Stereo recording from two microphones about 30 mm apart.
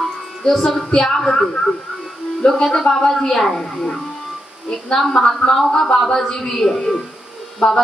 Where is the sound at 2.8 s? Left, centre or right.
Left.